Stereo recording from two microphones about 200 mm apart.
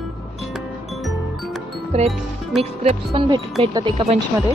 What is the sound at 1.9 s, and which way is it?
Speech, 30° right (ahead or behind).